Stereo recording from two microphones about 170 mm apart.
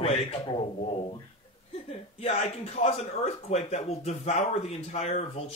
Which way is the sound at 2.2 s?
40° left (ahead or behind).